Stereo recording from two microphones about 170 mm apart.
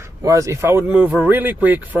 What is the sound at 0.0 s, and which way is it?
Speech, 20° right (ahead or behind).